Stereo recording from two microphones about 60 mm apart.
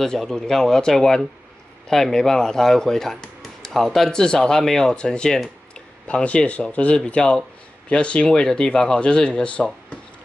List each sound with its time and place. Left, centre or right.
0.0 s speech: centre